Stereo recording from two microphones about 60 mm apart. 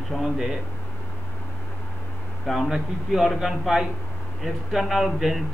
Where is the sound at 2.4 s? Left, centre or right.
Centre.